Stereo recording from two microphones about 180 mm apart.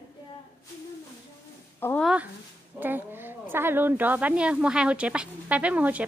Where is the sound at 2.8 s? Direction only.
10° right (ahead or behind).